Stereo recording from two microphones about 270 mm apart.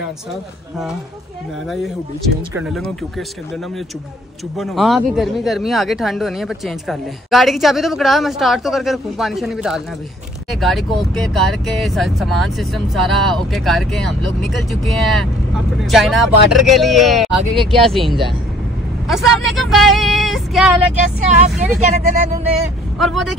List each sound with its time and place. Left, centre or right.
2.5 s speech: centre
4.6 s speech: centre
21.3 s speech: right
22.9 s speech: centre